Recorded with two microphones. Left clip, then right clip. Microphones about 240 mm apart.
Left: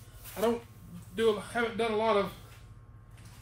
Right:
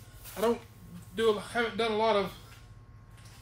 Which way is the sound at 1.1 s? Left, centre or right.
Centre.